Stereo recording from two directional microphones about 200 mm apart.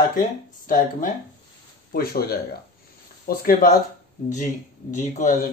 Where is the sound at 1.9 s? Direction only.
50° left (ahead or behind).